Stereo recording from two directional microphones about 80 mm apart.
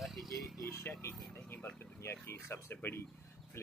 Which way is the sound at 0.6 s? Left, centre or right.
Left.